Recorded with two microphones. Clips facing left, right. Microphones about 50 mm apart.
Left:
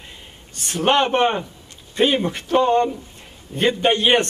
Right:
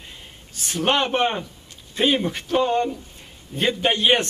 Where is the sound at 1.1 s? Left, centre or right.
Centre.